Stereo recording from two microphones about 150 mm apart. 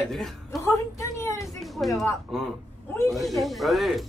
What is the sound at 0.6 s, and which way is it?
Speech, 20° left (ahead or behind).